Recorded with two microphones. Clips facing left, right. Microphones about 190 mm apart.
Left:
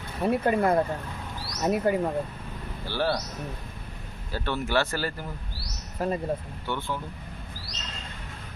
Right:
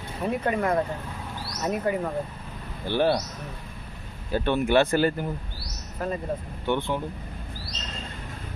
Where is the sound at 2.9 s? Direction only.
20° right (ahead or behind).